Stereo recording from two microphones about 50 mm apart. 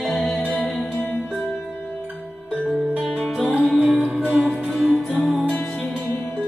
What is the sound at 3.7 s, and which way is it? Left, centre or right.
Music, right.